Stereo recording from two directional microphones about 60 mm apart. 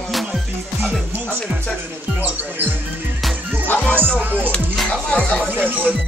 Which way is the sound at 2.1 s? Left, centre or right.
Right.